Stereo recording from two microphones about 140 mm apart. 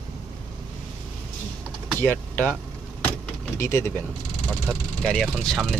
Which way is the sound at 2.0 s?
15° left (ahead or behind).